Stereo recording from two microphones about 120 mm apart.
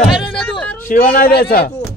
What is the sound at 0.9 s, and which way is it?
Speech, 90° left.